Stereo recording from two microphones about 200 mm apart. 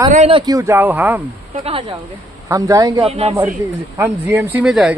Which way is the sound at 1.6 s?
25° right (ahead or behind).